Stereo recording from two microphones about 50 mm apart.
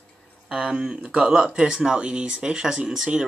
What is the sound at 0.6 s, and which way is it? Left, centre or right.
Speech, centre.